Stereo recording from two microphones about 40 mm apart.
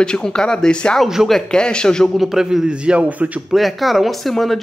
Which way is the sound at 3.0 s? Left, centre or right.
Right.